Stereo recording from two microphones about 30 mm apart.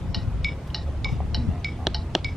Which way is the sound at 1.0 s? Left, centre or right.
Centre.